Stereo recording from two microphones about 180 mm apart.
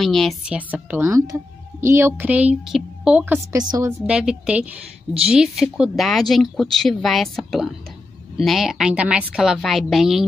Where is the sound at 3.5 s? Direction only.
20° right (ahead or behind).